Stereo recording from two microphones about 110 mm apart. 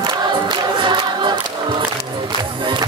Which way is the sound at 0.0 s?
45° right (ahead or behind).